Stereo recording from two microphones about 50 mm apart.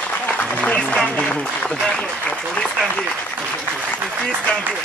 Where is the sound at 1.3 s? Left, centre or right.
Left.